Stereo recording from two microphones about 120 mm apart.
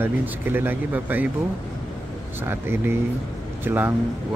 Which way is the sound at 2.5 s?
20° right (ahead or behind).